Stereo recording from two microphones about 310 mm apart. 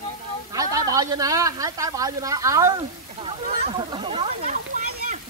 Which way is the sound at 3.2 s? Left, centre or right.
Right.